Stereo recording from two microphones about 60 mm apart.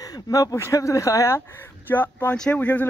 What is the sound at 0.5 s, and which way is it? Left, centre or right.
Speech, left.